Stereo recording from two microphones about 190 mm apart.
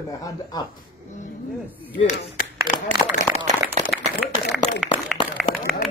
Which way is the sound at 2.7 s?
45° left (ahead or behind).